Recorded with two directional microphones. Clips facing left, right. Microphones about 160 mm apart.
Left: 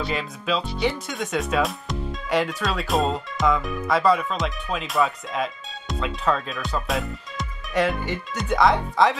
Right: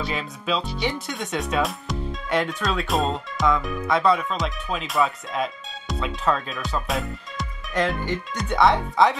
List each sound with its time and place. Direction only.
0.0 s speech: centre (ahead or behind)